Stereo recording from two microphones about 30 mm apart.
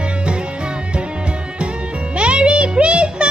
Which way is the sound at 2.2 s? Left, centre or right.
Right.